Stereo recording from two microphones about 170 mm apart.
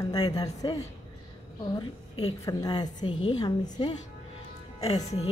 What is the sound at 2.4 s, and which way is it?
A woman's voice, 20° left (ahead or behind).